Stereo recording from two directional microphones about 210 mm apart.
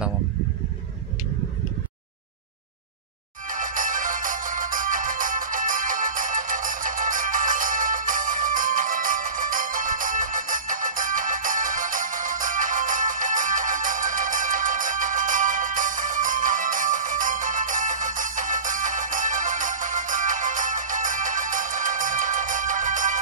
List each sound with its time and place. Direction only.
3.4 s music: 40° right (ahead or behind)